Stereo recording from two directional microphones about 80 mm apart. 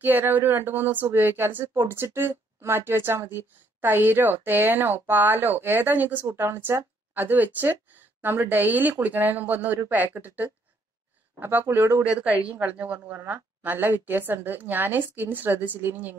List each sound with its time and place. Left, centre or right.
0.0 s a woman's voice: right
12.0 s speech: centre